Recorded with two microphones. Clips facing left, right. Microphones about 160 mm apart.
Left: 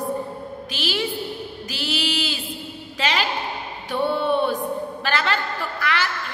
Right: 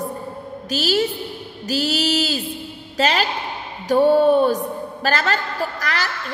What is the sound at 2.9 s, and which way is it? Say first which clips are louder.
A woman's voice: right 4 dB; 40° right (ahead or behind).